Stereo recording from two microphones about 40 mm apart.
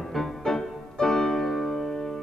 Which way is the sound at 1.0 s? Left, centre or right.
Centre.